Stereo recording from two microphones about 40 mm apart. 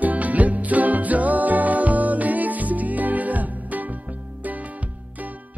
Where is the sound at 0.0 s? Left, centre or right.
Right.